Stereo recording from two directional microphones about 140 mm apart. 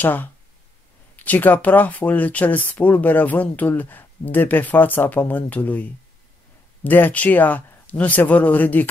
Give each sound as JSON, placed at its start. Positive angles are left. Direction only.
{"t": 0.0, "sound": "speech", "side_deg": 15}